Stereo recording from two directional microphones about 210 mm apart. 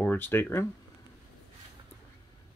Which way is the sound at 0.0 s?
10° left (ahead or behind).